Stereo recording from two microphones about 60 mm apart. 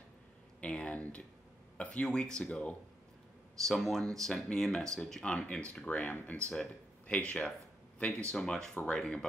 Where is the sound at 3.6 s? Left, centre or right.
Centre.